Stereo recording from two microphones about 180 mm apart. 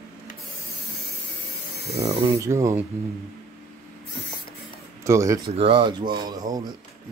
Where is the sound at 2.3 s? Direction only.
15° right (ahead or behind).